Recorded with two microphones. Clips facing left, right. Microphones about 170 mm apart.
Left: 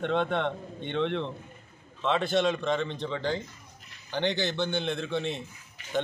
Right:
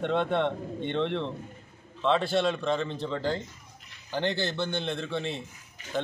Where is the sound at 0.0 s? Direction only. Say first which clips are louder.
Right 1 dB; centre (ahead or behind).